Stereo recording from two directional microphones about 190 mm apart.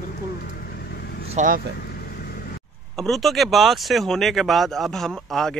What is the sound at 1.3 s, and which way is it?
Speech, 45° right (ahead or behind).